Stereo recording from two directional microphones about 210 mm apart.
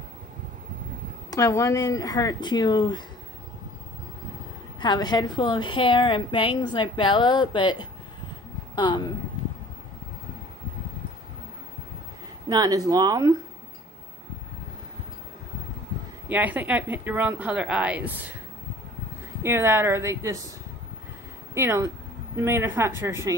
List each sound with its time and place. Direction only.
1.3 s speech: 15° left (ahead or behind)
4.7 s a woman's voice: 20° left (ahead or behind)
12.4 s speech: 20° right (ahead or behind)
16.3 s speech: 10° right (ahead or behind)
19.4 s speech: 10° right (ahead or behind)
21.5 s speech: 10° right (ahead or behind)